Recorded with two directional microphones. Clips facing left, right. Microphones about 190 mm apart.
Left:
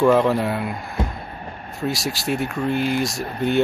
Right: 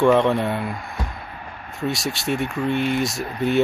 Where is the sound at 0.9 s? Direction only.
30° left (ahead or behind).